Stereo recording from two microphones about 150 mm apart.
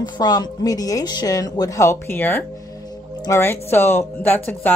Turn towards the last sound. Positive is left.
turn(degrees=15)  # may be behind; listen again after turning